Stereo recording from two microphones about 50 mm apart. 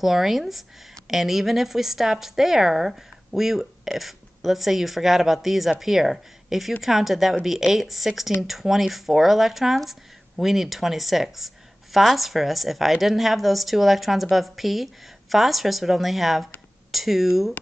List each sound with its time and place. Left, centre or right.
0.0 s speech: centre